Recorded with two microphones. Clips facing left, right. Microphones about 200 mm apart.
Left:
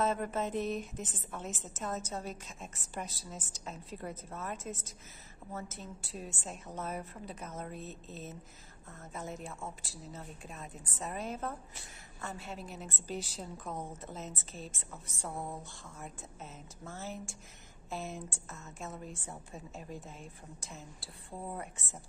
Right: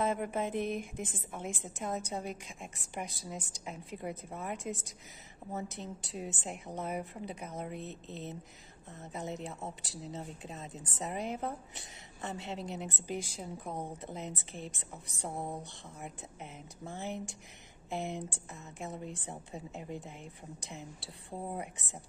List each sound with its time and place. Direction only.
0.0 s a woman's voice: 15° right (ahead or behind)
16.8 s a woman's voice: 15° right (ahead or behind)